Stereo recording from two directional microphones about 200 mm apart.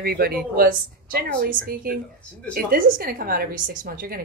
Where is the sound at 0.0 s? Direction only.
50° right (ahead or behind).